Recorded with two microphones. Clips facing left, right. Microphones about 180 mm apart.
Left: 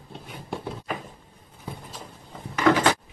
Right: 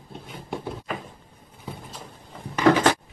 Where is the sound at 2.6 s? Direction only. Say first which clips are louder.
Right 2 dB; 35° right (ahead or behind).